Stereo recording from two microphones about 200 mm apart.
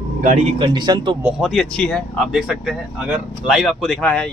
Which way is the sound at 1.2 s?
5° right (ahead or behind).